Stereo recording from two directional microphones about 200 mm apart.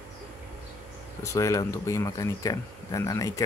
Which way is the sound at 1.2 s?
15° left (ahead or behind).